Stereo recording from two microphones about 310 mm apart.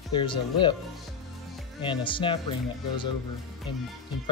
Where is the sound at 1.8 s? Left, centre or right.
Centre.